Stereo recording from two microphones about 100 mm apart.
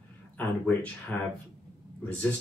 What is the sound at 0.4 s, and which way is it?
Speech, 20° left (ahead or behind).